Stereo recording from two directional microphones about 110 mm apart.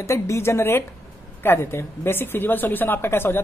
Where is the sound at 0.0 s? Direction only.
25° left (ahead or behind).